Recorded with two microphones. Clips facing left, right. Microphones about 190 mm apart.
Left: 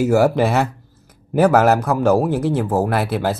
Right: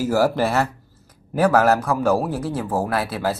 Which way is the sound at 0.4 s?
Centre (ahead or behind).